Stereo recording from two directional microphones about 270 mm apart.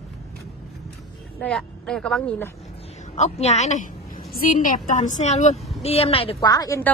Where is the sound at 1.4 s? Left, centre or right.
Centre.